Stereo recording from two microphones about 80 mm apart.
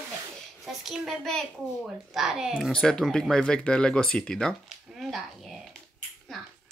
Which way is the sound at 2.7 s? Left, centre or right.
Centre.